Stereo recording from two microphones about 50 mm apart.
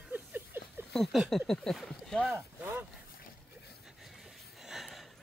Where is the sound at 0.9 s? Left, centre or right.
Centre.